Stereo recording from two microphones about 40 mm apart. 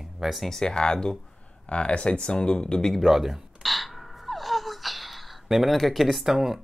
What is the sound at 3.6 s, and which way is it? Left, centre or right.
Gasp, centre.